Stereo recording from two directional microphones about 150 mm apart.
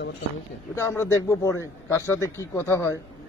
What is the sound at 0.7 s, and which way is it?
A man's voice, 15° left (ahead or behind).